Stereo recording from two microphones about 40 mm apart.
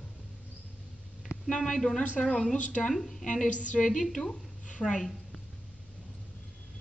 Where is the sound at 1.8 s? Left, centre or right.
Centre.